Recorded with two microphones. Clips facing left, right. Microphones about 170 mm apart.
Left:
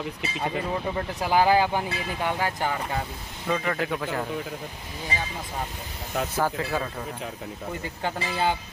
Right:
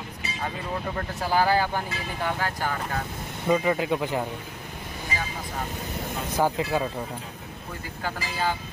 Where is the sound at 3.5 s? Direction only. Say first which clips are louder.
Right 4 dB; 15° right (ahead or behind).